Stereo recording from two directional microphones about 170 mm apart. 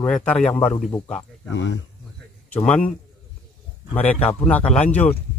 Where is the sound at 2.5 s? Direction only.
5° left (ahead or behind).